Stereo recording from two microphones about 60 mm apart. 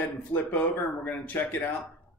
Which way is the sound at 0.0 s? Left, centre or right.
Left.